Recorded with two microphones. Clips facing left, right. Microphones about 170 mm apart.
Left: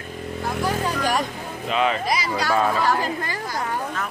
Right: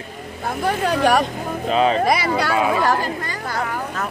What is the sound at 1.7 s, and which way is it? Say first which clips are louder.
Speech: right 4 dB; 35° right (ahead or behind).